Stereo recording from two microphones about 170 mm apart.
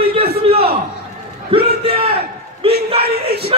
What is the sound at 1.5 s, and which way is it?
A man's voice, 35° right (ahead or behind).